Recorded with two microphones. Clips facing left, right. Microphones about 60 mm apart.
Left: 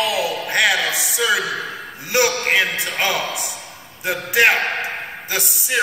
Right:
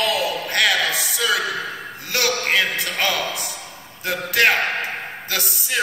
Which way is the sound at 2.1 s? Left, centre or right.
Centre.